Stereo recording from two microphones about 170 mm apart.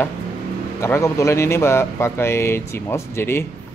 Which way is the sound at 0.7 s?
15° left (ahead or behind).